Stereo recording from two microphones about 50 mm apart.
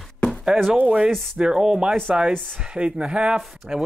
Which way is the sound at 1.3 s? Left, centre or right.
Centre.